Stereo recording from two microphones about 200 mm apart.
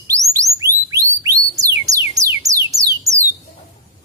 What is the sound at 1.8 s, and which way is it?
Music, 15° right (ahead or behind).